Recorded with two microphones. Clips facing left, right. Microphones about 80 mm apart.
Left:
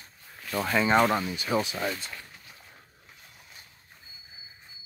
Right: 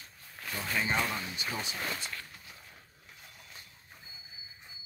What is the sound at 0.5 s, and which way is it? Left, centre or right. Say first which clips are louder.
Speech: left 9 dB; left.